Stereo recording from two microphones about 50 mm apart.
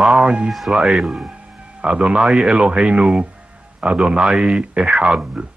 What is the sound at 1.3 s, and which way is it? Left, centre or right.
Speech, right.